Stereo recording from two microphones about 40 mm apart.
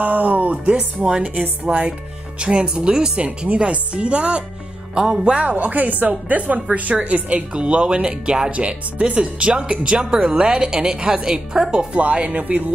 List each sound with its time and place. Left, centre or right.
0.0 s a woman's voice: right
5.4 s a woman's voice: right; by 11.9 s centre
11.9 s a woman's voice: right